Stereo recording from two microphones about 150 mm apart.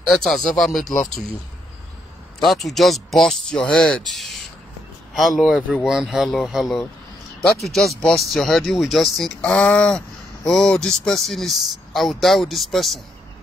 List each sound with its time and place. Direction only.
0.1 s speech: 5° left (ahead or behind)
2.4 s speech: centre (ahead or behind)